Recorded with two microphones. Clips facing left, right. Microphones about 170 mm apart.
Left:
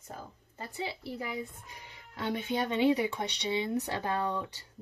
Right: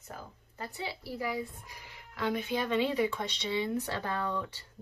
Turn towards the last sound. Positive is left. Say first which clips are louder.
# left 2 dB
turn(degrees=20)  # may be behind; listen again after turning